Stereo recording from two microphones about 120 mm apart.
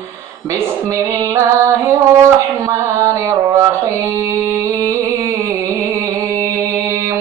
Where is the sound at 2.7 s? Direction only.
25° right (ahead or behind).